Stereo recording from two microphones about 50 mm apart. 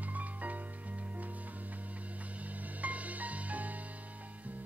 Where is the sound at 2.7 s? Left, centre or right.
Right.